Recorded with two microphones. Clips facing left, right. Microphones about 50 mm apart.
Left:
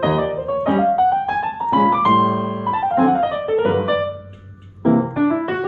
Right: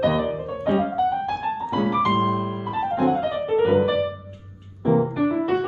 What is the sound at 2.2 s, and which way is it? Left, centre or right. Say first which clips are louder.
Piano: left 5 dB; left.